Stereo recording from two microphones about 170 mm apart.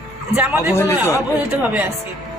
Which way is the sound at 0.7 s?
15° left (ahead or behind).